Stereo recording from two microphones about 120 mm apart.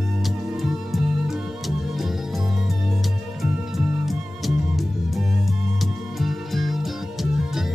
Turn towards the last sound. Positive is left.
turn(degrees=0)  # may be behind; listen again after turning